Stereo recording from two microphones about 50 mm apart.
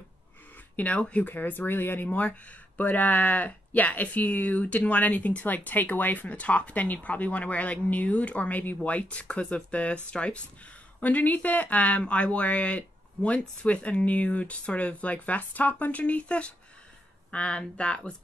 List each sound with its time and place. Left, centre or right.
0.7 s speech: left
2.0 s speech: left